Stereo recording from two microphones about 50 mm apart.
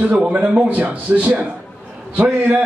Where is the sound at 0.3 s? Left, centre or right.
Right.